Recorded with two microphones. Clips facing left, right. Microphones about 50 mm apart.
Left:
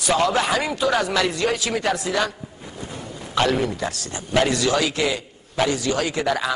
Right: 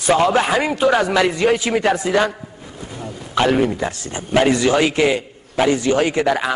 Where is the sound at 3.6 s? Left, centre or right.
Right.